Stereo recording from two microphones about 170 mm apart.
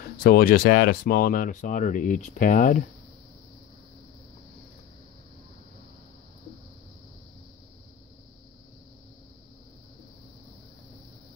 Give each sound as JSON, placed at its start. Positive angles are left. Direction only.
{"t": 0.2, "sound": "speech", "side_deg": 60}